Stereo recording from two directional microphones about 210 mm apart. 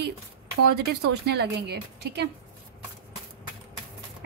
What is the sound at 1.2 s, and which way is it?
Speech, 50° right (ahead or behind).